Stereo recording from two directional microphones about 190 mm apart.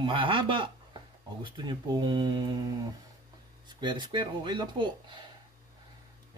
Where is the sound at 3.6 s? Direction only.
25° right (ahead or behind).